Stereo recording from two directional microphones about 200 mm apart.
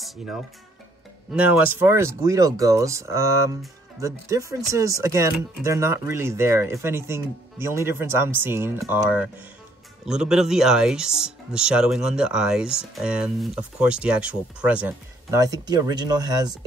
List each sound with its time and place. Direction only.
1.3 s speech: 10° right (ahead or behind)
10.0 s speech: 5° right (ahead or behind)
15.3 s speech: 15° right (ahead or behind)